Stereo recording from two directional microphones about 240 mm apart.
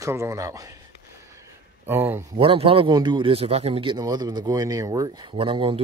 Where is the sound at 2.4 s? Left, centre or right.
Right.